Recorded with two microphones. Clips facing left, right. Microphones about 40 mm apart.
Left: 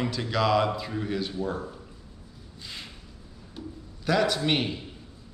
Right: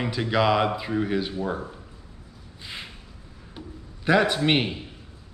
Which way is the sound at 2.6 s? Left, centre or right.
Right.